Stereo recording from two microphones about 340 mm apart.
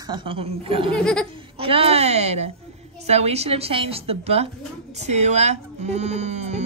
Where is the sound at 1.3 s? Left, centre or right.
Centre.